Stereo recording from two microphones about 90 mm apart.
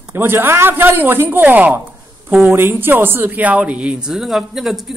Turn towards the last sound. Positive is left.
turn(degrees=0)  # may be behind; listen again after turning